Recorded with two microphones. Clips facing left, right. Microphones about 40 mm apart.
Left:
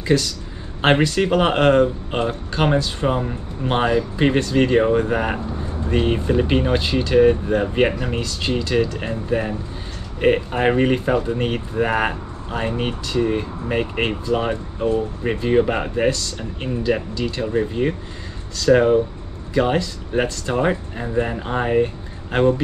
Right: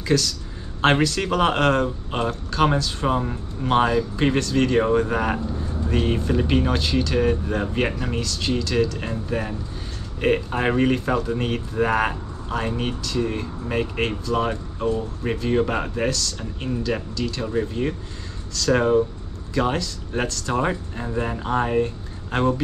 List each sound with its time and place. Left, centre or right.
0.0 s speech: centre